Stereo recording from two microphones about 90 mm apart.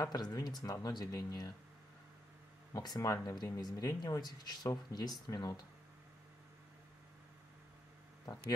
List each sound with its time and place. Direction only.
0.0 s speech: 45° left (ahead or behind)
2.7 s speech: 45° left (ahead or behind)